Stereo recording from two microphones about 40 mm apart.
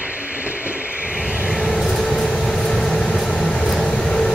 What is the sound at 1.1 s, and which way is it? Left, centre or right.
Vehicle, centre.